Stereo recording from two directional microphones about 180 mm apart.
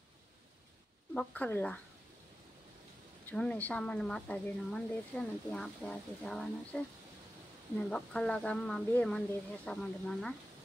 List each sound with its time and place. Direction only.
1.1 s speech: 10° left (ahead or behind)
3.3 s speech: 10° left (ahead or behind)
7.9 s speech: 5° left (ahead or behind)